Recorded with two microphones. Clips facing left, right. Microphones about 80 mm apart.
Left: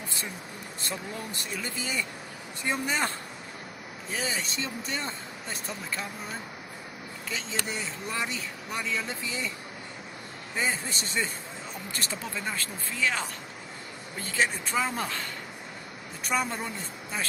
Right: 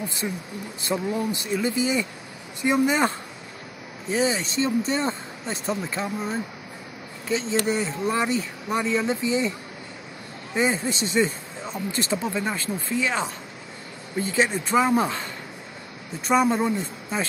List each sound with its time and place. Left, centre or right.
0.8 s speech: centre
4.1 s speech: right
10.5 s speech: right
16.3 s speech: centre